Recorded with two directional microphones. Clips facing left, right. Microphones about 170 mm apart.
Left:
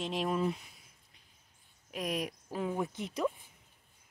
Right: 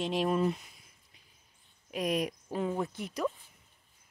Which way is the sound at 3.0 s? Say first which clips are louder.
Even; 25° left (ahead or behind).